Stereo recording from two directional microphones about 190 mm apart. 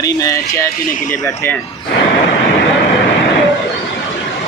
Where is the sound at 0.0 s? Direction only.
15° left (ahead or behind).